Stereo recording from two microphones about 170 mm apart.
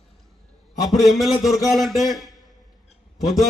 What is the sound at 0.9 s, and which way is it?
Speech, centre (ahead or behind).